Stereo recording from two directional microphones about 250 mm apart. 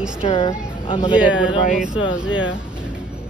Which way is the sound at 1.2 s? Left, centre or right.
Centre.